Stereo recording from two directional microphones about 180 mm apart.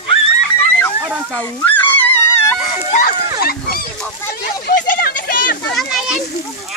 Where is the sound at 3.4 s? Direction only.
60° left (ahead or behind).